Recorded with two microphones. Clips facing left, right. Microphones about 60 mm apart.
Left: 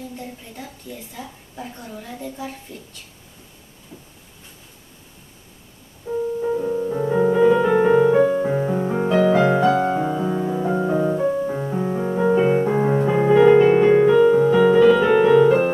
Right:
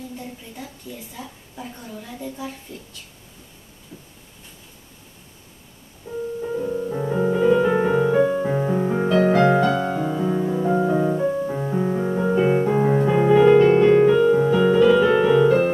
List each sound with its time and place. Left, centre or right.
6.0 s music: centre
7.5 s music: centre
7.8 s music: centre
9.8 s music: left
10.0 s music: centre
14.1 s music: centre